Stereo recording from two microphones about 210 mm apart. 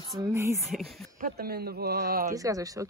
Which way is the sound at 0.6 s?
Centre (ahead or behind).